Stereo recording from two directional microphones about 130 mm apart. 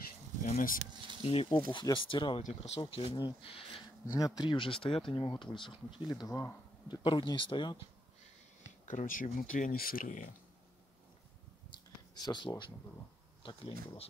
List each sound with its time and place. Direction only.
0.4 s speech: 90° left
1.2 s speech: 50° left (ahead or behind)
4.1 s speech: 30° left (ahead or behind)
7.0 s speech: 40° left (ahead or behind)
8.8 s speech: 85° left
11.7 s a sound: 35° left (ahead or behind)
13.4 s speech: 40° left (ahead or behind)